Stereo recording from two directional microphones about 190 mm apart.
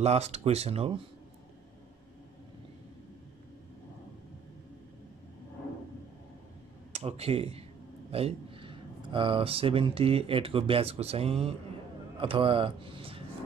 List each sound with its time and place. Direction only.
0.0 s speech: 35° right (ahead or behind)
6.9 s speech: 35° right (ahead or behind)